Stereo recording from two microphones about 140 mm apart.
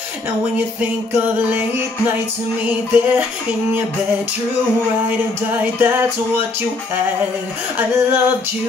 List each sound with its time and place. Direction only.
0.6 s music: 15° right (ahead or behind)
2.6 s music: 10° right (ahead or behind)
5.5 s music: 15° right (ahead or behind)
7.7 s music: 15° right (ahead or behind)